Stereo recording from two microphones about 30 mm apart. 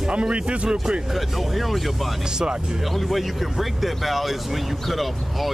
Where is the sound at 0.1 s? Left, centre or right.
Right.